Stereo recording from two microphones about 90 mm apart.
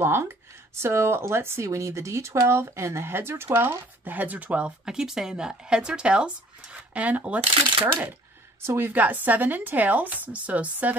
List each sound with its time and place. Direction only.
0.0 s speech: 25° right (ahead or behind)